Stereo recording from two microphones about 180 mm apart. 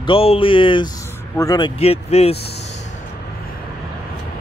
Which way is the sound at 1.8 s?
35° left (ahead or behind).